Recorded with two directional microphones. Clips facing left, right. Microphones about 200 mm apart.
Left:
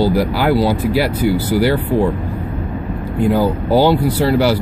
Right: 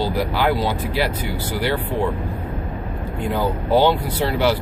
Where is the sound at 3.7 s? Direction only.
5° left (ahead or behind).